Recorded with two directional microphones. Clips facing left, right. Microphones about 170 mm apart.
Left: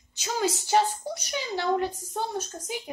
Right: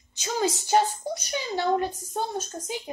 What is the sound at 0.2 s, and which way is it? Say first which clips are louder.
Speech: right 1 dB; 5° left (ahead or behind).